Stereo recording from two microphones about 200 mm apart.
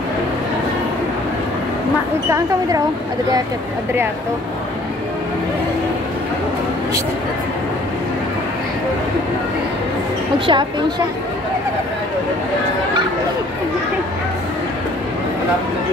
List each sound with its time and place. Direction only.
10.4 s a woman's voice: 25° right (ahead or behind)